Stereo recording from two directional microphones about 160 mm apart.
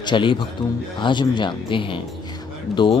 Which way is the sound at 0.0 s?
30° left (ahead or behind).